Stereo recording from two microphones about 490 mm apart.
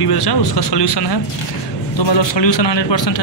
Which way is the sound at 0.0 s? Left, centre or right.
Left.